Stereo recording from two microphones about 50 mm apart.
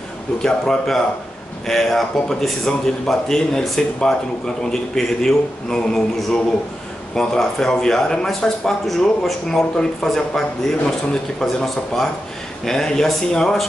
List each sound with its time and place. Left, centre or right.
0.4 s a man's voice: centre